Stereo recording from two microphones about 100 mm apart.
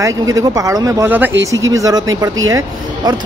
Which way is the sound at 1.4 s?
30° right (ahead or behind).